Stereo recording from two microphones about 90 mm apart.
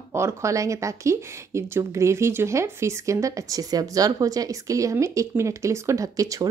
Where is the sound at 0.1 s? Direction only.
30° right (ahead or behind).